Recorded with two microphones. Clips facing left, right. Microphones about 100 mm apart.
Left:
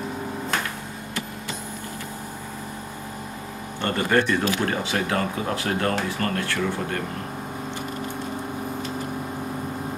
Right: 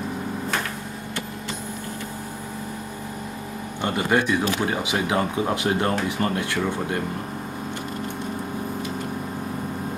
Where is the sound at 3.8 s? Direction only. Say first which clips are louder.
Even; 15° right (ahead or behind).